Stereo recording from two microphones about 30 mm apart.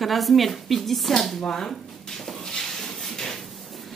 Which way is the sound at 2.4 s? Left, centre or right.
Left.